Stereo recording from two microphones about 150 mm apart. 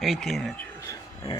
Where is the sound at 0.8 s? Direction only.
20° left (ahead or behind).